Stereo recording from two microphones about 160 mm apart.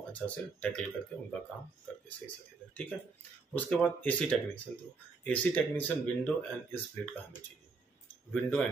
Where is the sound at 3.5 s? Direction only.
10° left (ahead or behind).